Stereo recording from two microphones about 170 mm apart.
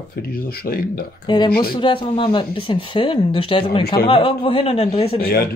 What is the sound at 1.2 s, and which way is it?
Speech, 25° left (ahead or behind).